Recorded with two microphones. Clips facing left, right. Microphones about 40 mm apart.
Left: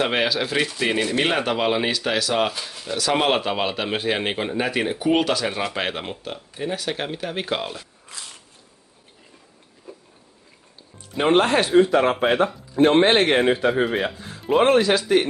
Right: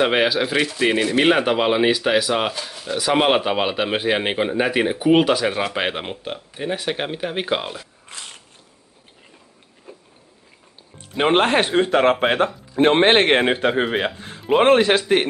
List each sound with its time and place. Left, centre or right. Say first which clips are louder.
0.0 s a man's voice: right 4 dB; centre
8.1 s a sound: right 2 dB; right
9.9 s a sound: left 1 dB; right
11.3 s speech: left 1 dB; right
11.8 s speech: right 1 dB; right
12.7 s speech: right 1 dB; right
14.5 s speech: right 2 dB; right